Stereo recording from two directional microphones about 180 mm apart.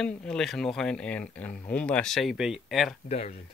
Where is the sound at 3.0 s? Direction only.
35° left (ahead or behind).